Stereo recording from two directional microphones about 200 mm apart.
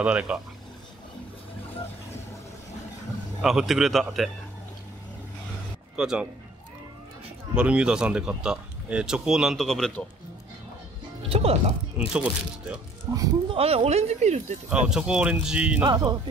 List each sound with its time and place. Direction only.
0.0 s speech: 5° right (ahead or behind)
3.4 s speech: centre (ahead or behind)
5.9 s speech: 5° right (ahead or behind)
7.5 s speech: 5° right (ahead or behind)
11.2 s speech: 30° right (ahead or behind)
12.1 s speech: 5° right (ahead or behind)
13.1 s speech: 15° right (ahead or behind)
13.6 s speech: 30° right (ahead or behind)
14.9 s speech: 5° right (ahead or behind)
15.8 s speech: 20° right (ahead or behind)